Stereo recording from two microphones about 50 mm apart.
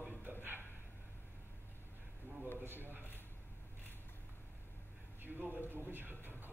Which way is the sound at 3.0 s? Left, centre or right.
Left.